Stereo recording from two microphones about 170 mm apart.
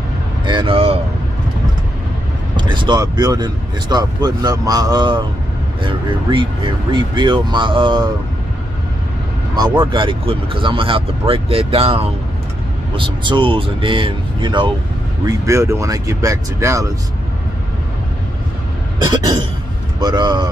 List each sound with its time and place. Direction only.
0.5 s a sound: 30° right (ahead or behind)
2.5 s speech: 25° right (ahead or behind)
9.6 s speech: 30° right (ahead or behind)
15.2 s speech: 15° right (ahead or behind)
19.0 s cough: 25° right (ahead or behind)
20.0 s speech: 25° right (ahead or behind)